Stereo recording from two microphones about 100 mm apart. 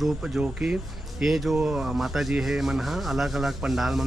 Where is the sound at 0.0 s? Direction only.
5° right (ahead or behind).